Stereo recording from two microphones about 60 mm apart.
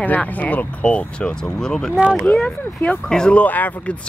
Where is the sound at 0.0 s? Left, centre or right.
Left.